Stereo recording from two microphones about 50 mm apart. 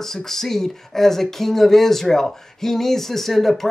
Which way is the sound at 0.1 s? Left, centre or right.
Centre.